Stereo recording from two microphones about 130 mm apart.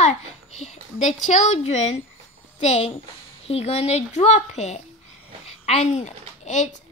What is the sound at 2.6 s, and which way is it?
A woman's voice, 55° left (ahead or behind).